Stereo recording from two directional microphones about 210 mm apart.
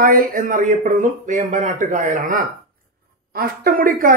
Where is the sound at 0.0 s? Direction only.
40° right (ahead or behind).